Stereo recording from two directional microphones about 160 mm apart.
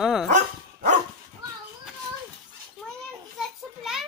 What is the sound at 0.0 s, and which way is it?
Dog, 5° right (ahead or behind).